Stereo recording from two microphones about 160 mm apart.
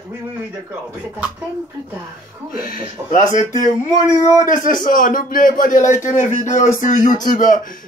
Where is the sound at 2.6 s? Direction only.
60° left (ahead or behind).